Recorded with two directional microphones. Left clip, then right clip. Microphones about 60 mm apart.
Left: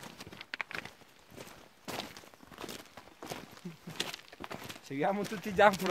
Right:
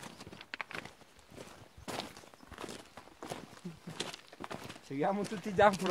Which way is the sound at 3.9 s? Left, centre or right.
Left.